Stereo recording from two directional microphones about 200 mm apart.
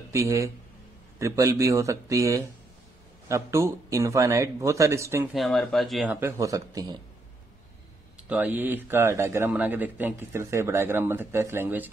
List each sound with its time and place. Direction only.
0.1 s speech: 15° right (ahead or behind)
5.3 s speech: centre (ahead or behind)
6.1 s speech: 15° right (ahead or behind)
8.3 s speech: 10° right (ahead or behind)